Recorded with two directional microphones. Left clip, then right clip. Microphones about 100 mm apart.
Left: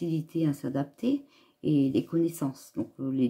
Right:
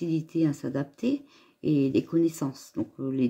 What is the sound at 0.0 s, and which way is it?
Speech, 20° right (ahead or behind).